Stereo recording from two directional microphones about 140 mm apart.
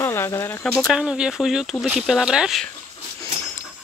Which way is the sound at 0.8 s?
Centre (ahead or behind).